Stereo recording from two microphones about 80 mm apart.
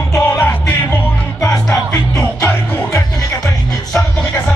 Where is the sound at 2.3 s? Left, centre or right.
Left.